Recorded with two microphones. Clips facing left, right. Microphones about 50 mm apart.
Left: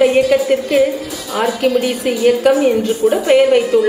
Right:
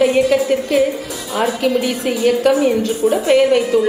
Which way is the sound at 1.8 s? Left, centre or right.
Centre.